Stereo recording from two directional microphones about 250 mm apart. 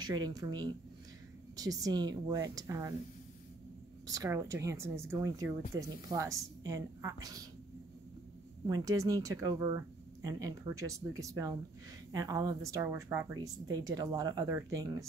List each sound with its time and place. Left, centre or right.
0.0 s speech: centre
4.1 s speech: centre
8.6 s speech: centre